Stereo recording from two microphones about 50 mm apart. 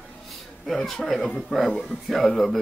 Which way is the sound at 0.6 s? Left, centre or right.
Centre.